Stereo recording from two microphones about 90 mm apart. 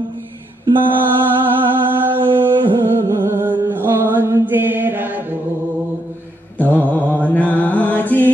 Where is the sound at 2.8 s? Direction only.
30° right (ahead or behind).